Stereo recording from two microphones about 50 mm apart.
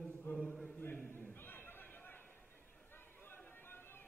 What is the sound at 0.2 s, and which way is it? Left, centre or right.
Chant, left.